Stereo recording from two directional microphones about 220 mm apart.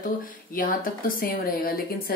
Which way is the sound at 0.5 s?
40° left (ahead or behind).